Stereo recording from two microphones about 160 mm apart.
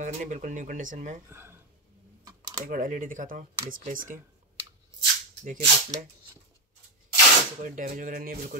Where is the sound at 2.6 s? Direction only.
55° right (ahead or behind).